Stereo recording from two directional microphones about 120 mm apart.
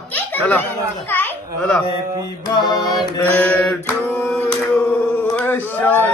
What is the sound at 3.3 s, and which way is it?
Speech, 10° left (ahead or behind).